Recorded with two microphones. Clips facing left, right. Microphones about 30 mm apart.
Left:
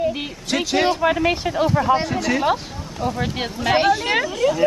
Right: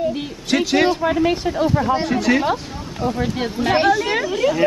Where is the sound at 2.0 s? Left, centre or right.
Centre.